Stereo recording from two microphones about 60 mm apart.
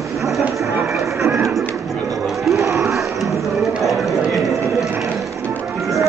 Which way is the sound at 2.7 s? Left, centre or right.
Centre.